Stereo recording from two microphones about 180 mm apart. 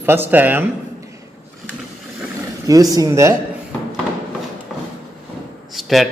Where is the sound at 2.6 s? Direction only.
20° right (ahead or behind).